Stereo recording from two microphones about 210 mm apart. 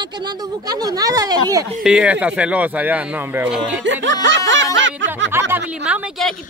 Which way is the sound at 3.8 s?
60° right (ahead or behind).